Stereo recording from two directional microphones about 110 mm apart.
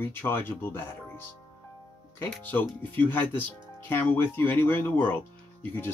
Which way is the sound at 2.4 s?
15° left (ahead or behind).